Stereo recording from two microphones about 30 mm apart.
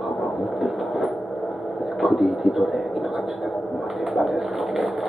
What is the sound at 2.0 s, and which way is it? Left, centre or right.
Speech, centre.